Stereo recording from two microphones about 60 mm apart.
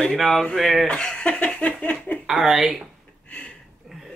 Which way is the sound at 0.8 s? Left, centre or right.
Centre.